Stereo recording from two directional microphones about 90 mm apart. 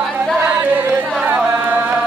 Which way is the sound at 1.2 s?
20° right (ahead or behind).